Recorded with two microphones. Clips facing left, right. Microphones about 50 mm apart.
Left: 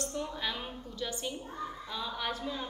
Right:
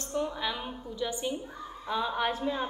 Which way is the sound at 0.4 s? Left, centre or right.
Centre.